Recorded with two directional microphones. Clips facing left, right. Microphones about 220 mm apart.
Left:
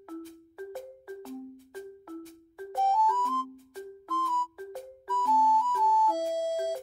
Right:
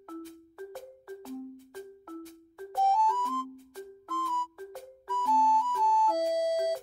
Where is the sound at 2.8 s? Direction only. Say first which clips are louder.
Even; 15° right (ahead or behind).